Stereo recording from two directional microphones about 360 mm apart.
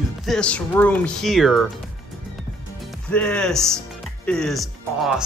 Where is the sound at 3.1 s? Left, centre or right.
Centre.